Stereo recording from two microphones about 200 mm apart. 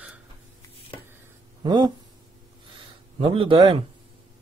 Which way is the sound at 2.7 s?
25° right (ahead or behind).